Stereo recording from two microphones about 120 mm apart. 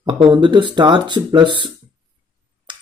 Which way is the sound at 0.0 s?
40° right (ahead or behind).